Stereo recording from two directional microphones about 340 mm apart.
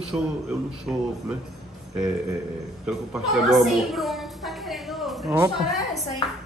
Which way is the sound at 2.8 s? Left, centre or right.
Centre.